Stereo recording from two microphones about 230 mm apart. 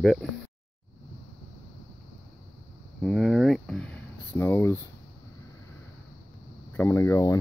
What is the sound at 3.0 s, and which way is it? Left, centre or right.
Speech, centre.